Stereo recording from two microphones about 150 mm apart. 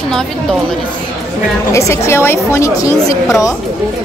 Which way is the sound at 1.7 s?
20° left (ahead or behind).